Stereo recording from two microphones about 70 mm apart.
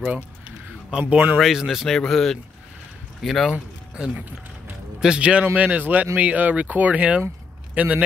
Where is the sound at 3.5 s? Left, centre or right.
Centre.